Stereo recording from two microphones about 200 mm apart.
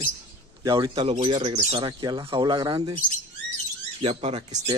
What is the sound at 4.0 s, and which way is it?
Speech, 30° right (ahead or behind).